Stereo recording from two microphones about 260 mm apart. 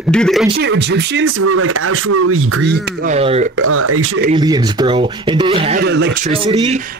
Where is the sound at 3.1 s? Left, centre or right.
Right.